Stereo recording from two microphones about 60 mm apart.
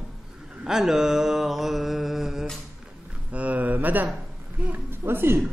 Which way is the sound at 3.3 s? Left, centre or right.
Right.